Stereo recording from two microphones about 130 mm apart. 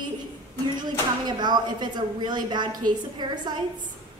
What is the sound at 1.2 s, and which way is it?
A woman's voice, 35° right (ahead or behind).